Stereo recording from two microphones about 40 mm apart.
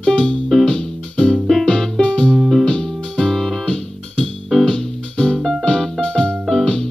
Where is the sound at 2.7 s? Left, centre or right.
Centre.